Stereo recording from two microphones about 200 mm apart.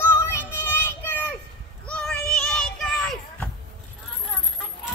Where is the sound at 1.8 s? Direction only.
5° left (ahead or behind).